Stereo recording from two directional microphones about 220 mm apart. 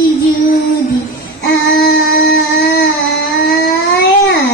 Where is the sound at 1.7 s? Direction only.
45° left (ahead or behind).